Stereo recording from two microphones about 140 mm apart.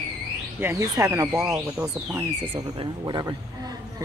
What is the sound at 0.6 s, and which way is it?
Speech, 20° right (ahead or behind).